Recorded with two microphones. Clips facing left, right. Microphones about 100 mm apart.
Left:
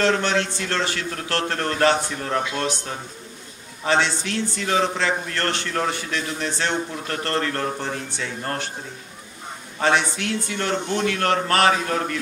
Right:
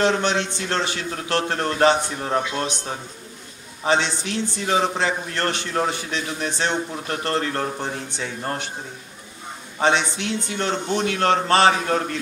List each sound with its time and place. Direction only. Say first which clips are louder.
0.0 s a man's voice: even; 20° right (ahead or behind)
9.8 s a man's voice: even; 20° right (ahead or behind)